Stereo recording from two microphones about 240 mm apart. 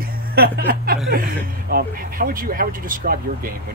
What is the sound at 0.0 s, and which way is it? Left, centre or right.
Speech, right.